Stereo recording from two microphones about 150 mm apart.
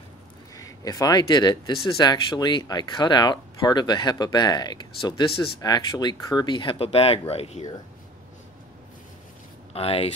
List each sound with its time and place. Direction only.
0.6 s speech: 25° left (ahead or behind); by 7.6 s 45° left (ahead or behind)
9.7 s speech: 40° left (ahead or behind)